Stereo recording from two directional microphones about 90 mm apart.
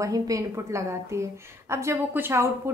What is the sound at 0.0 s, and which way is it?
A woman's voice, 40° right (ahead or behind).